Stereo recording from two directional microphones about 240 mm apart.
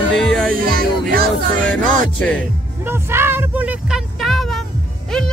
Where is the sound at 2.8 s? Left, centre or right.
Centre.